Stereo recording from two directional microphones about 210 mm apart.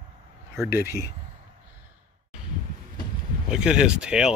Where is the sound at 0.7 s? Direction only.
50° left (ahead or behind).